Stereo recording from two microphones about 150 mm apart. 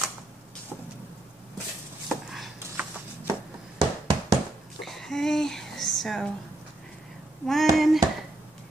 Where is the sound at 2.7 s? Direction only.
15° right (ahead or behind).